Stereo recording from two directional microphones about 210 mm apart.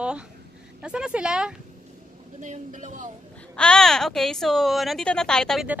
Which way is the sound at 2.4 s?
35° right (ahead or behind).